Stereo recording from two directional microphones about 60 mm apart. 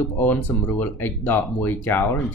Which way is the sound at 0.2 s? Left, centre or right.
Left.